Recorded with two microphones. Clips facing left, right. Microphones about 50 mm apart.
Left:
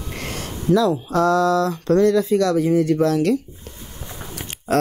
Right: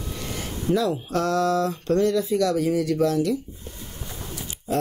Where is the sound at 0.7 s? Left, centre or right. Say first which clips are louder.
Left 5 dB; right.